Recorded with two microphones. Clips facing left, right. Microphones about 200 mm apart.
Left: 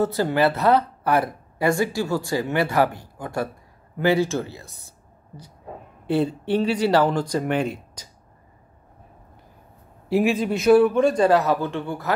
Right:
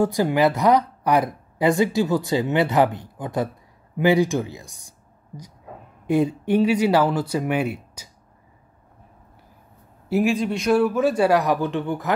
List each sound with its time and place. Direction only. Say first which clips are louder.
0.0 s a woman's voice: right 1 dB; 15° right (ahead or behind)
6.0 s speech: right 2 dB; 10° right (ahead or behind)
10.0 s a man's voice: even; centre (ahead or behind); by 12.1 s 20° right (ahead or behind)